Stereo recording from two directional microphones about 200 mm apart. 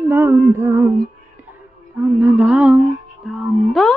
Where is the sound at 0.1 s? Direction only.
10° right (ahead or behind).